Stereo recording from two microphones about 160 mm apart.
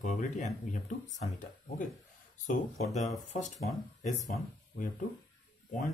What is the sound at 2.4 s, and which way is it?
Speech, 50° left (ahead or behind).